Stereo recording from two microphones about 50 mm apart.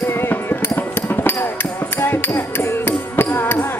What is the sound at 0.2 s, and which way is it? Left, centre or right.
Music, left.